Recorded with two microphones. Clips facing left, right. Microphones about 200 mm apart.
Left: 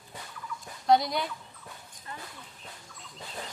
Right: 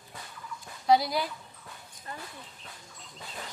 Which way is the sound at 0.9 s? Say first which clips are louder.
Even; centre (ahead or behind).